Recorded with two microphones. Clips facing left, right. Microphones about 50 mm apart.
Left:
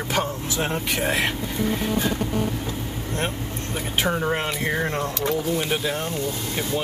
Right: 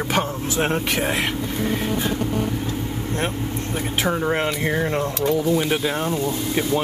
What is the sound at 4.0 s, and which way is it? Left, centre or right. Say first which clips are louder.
Speech: right 2 dB; centre.